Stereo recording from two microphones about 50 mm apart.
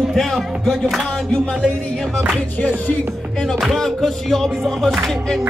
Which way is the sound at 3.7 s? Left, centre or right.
Centre.